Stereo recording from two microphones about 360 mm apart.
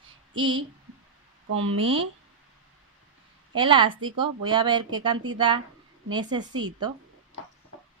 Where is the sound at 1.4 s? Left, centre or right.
Right.